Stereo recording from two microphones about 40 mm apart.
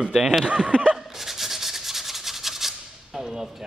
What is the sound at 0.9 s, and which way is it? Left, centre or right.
Rub, centre.